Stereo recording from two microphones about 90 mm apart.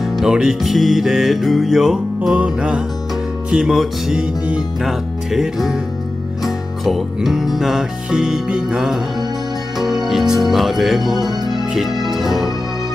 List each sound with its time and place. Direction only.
0.0 s music: 5° right (ahead or behind)
10.0 s speech: 5° right (ahead or behind)
12.0 s music: centre (ahead or behind)